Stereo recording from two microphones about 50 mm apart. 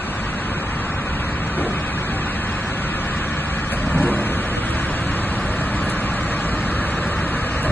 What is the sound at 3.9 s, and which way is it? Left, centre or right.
Vehicle, left.